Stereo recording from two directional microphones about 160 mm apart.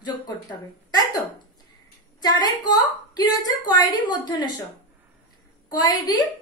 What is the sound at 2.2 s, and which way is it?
A woman's voice, 25° left (ahead or behind).